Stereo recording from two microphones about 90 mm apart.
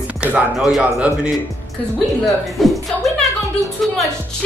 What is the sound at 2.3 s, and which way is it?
Music, centre (ahead or behind).